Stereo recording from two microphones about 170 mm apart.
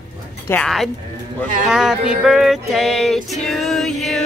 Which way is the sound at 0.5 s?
5° left (ahead or behind).